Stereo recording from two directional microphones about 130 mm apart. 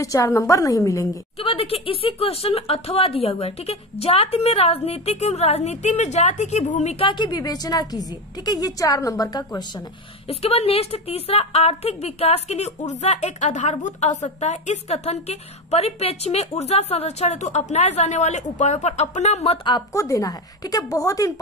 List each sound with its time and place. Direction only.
0.0 s speech: 25° left (ahead or behind)
1.4 s speech: 50° left (ahead or behind)
7.0 s a woman's voice: 35° left (ahead or behind)
10.2 s a woman's voice: 50° left (ahead or behind)
19.9 s speech: 25° left (ahead or behind)